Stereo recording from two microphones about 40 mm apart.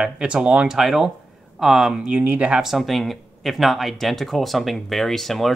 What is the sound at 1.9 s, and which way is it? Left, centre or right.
Speech, right.